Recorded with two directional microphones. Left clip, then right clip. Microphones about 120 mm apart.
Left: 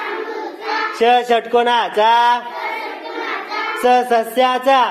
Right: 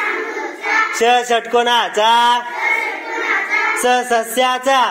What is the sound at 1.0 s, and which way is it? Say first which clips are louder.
Speech: left 4 dB; 20° left (ahead or behind).